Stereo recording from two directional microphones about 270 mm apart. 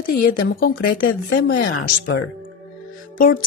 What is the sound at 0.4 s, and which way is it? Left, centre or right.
Speech, left.